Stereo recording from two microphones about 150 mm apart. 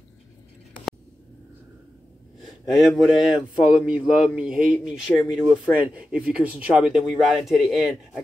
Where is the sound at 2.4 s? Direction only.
Centre (ahead or behind).